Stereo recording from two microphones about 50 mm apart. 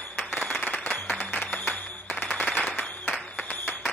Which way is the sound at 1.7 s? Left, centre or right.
Left.